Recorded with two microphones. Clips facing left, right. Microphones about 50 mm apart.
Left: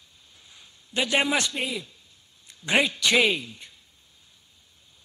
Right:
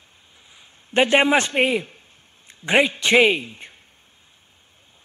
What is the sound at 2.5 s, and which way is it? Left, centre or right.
A woman's voice, right.